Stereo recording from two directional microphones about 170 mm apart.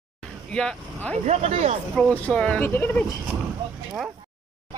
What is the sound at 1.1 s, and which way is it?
Speech, 40° right (ahead or behind).